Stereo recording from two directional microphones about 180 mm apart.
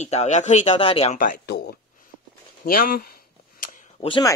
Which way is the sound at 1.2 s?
50° left (ahead or behind).